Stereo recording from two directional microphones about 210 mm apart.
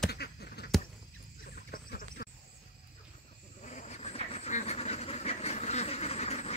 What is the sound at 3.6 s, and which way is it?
Vehicle, 35° left (ahead or behind).